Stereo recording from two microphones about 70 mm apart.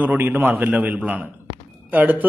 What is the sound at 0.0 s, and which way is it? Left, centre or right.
Speech, right.